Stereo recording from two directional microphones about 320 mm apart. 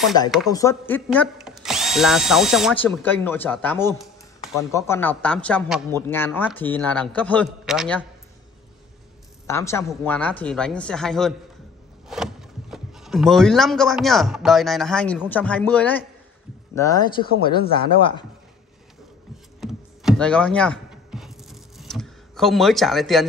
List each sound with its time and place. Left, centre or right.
0.5 s speech: centre
9.5 s speech: centre
19.6 s a sound: centre